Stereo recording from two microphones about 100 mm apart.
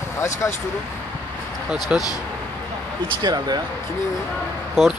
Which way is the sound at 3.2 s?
45° right (ahead or behind).